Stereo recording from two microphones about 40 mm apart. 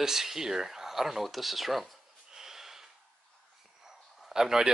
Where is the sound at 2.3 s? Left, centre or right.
Centre.